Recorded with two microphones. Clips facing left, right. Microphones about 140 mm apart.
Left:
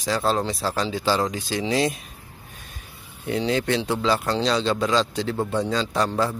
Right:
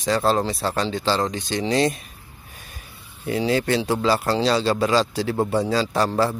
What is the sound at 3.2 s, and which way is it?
A man's voice, 5° right (ahead or behind).